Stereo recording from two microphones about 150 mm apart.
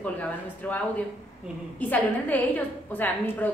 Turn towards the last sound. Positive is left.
turn(degrees=10)  # may be behind; listen again after turning